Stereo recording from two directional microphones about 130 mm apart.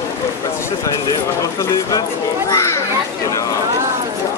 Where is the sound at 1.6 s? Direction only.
25° left (ahead or behind).